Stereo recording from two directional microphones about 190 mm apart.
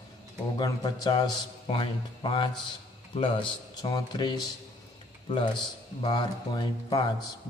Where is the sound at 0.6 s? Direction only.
20° left (ahead or behind).